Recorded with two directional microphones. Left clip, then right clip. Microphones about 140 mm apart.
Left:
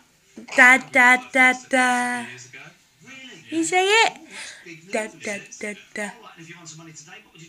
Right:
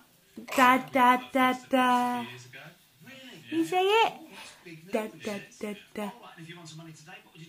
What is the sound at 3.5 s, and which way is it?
Speech, centre (ahead or behind).